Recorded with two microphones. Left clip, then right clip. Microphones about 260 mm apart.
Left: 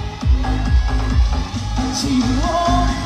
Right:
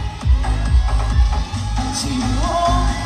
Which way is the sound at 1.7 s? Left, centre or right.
Right.